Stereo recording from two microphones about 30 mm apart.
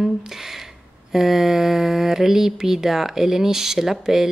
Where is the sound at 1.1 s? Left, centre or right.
Centre.